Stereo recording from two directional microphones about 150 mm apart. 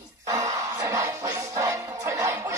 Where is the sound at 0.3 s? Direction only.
20° right (ahead or behind).